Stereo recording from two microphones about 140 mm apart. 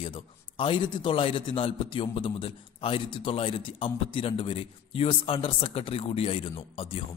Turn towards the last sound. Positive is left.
turn(degrees=40)  # may be behind; listen again after turning